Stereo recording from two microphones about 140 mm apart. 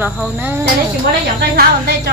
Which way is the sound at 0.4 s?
15° right (ahead or behind).